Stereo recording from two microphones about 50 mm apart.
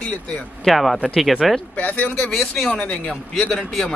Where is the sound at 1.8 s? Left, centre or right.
Left.